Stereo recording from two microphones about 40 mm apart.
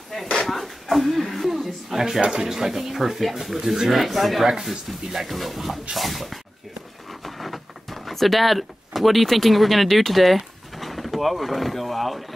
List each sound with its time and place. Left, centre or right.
0.5 s speech: centre
2.2 s speech: centre
7.1 s a sound: centre